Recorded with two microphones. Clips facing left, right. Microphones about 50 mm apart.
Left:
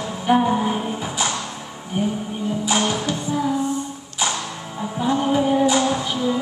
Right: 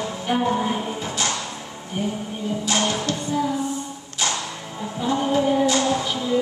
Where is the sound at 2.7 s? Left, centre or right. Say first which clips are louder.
Left 1 dB; centre.